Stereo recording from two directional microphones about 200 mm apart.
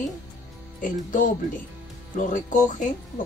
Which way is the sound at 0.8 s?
40° left (ahead or behind).